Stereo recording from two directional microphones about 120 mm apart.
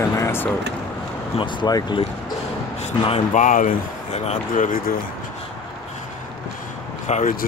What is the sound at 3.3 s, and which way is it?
Speech, 90° left.